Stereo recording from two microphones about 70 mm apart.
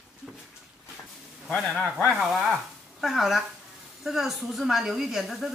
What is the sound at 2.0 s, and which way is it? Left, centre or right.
Speech, centre.